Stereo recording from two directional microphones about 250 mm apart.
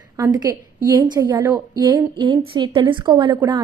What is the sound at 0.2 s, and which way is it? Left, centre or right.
A woman's voice, centre.